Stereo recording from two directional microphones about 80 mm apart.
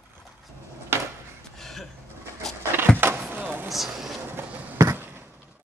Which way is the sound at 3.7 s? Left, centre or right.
Centre.